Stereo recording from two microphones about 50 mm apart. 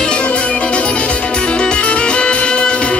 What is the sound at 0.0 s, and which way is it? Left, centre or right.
Music, left.